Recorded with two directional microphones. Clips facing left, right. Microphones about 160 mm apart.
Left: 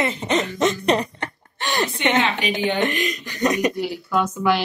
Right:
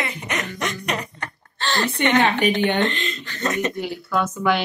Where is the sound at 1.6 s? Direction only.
15° left (ahead or behind).